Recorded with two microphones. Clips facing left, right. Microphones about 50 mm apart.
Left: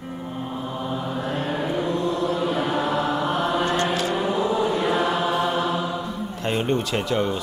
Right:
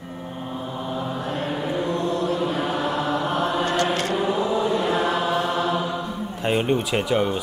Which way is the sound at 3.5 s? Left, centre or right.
Left.